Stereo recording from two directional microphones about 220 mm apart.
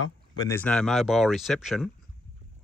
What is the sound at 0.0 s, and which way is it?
Speech, 15° left (ahead or behind).